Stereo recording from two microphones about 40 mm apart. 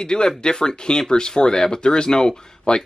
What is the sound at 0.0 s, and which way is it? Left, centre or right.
Speech, centre.